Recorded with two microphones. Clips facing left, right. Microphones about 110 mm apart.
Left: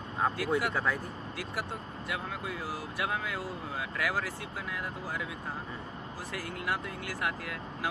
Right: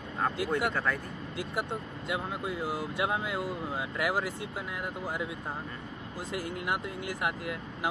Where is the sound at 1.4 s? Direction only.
20° right (ahead or behind).